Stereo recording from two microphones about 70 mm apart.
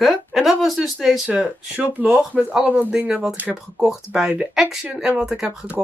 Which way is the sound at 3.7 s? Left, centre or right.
Centre.